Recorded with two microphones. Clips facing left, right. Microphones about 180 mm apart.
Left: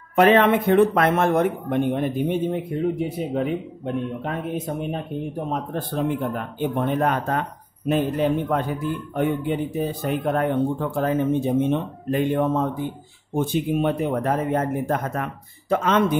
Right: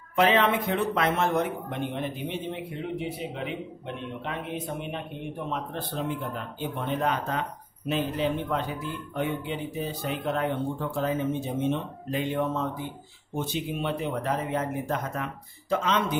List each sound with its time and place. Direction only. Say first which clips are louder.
0.1 s speech: left 6 dB; 55° left (ahead or behind)